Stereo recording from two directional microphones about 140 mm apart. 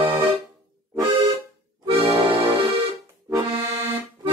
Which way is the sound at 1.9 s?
40° right (ahead or behind).